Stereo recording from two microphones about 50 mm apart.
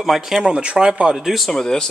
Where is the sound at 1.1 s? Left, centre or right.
Centre.